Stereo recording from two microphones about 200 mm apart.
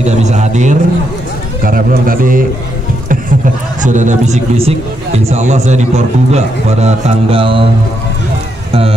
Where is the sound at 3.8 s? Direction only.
40° right (ahead or behind).